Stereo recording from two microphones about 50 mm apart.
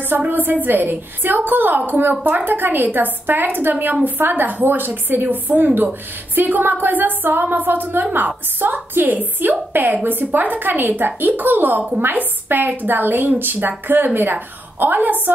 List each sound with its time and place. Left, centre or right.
0.3 s a woman's voice: right